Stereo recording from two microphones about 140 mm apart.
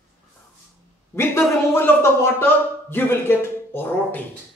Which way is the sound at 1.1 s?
20° left (ahead or behind).